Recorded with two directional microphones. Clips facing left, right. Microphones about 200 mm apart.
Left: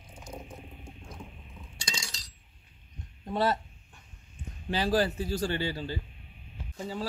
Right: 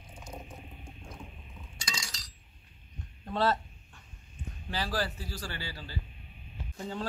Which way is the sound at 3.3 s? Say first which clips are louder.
Left 1 dB; 15° left (ahead or behind).